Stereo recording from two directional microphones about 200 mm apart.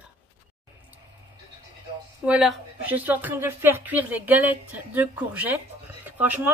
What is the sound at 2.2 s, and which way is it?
Speech, 5° right (ahead or behind).